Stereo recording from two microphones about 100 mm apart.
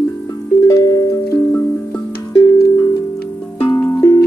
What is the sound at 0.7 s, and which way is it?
Music, 30° left (ahead or behind).